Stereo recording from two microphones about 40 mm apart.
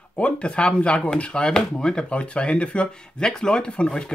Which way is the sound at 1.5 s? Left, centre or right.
Centre.